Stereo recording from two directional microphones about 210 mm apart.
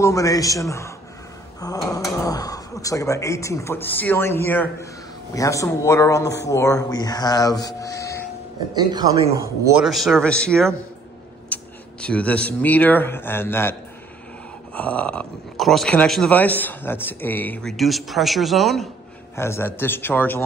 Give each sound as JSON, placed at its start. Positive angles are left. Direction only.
{"t": 0.0, "sound": "speech", "side_deg": 15}
{"t": 8.7, "sound": "speech", "side_deg": -20}
{"t": 9.8, "sound": "speech", "side_deg": 0}
{"t": 19.3, "sound": "speech", "side_deg": 10}